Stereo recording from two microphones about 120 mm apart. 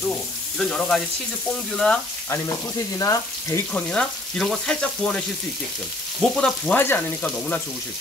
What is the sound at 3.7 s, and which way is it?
Frying, 10° left (ahead or behind).